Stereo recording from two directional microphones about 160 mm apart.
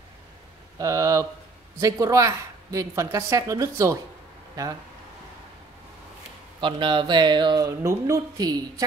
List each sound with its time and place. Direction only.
0.7 s a sound: 20° right (ahead or behind)
1.8 s a woman's voice: 20° right (ahead or behind)
6.6 s a woman's voice: 30° right (ahead or behind)
7.6 s a woman's voice: 15° right (ahead or behind)